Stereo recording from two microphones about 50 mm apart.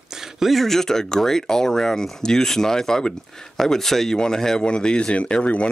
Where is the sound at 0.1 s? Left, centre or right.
Centre.